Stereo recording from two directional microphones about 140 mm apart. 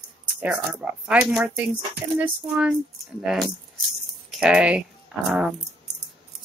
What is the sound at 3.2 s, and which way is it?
Speech, centre (ahead or behind).